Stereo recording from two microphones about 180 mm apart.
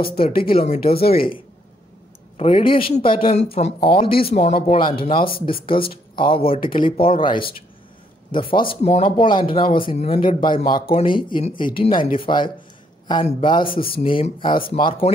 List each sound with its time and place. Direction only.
0.1 s speech: 30° left (ahead or behind)